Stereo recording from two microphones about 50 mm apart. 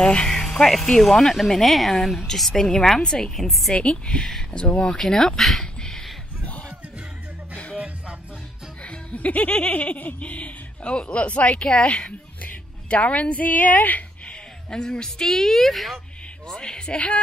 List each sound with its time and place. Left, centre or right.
0.0 s a woman's voice: centre
3.7 s a woman's voice: left
4.2 s a woman's voice: centre
4.6 s a woman's voice: left
4.9 s a woman's voice: centre
5.6 s a sound: centre
8.8 s a woman's voice: left
14.7 s a woman's voice: centre
16.4 s a woman's voice: centre